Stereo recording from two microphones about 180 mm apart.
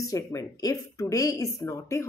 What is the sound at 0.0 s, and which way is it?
Speech, 20° left (ahead or behind).